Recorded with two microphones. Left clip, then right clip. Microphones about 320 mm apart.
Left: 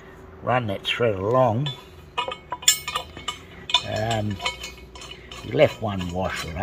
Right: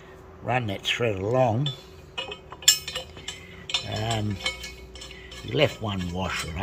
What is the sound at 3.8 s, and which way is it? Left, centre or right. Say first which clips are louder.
Cutlery: left 4 dB; centre.